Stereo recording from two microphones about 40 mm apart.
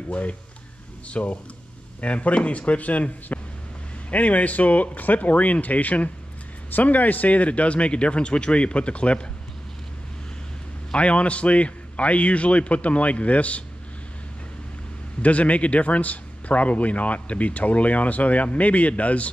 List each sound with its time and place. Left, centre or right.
0.1 s speech: left
10.9 s speech: left
15.2 s speech: left